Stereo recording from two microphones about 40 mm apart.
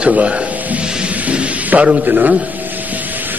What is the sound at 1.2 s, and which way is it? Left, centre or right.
Music, right.